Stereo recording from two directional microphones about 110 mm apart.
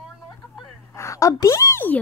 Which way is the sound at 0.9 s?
25° left (ahead or behind).